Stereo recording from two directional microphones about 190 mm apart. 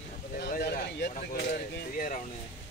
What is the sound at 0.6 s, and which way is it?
Vehicle, 60° left (ahead or behind).